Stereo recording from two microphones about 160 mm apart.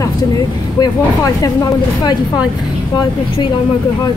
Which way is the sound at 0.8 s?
20° left (ahead or behind).